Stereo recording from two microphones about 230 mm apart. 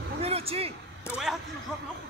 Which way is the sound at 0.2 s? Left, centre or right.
Right.